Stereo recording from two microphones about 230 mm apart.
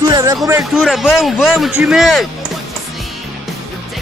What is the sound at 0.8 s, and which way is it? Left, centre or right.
Speech, centre.